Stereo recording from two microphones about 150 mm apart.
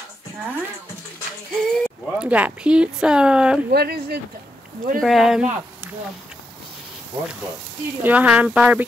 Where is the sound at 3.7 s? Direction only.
90° right.